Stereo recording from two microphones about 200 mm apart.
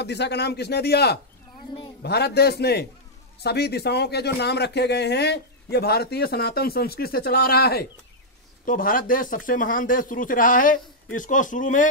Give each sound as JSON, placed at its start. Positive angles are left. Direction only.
{"t": 0.0, "sound": "a man's voice", "side_deg": 60}